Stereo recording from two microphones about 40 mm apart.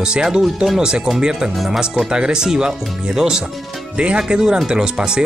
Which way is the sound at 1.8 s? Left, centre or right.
Right.